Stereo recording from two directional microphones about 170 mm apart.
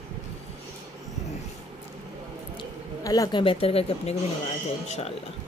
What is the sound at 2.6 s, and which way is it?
Speech, 20° left (ahead or behind).